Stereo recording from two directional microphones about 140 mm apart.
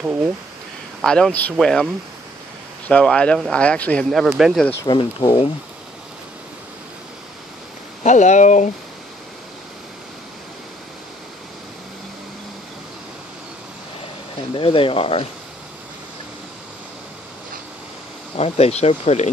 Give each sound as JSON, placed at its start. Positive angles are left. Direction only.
{"t": 1.0, "sound": "speech", "side_deg": 5}
{"t": 2.9, "sound": "speech", "side_deg": 5}
{"t": 4.8, "sound": "speech", "side_deg": 35}
{"t": 8.0, "sound": "speech", "side_deg": 60}
{"t": 14.5, "sound": "speech", "side_deg": 40}
{"t": 18.3, "sound": "speech", "side_deg": 50}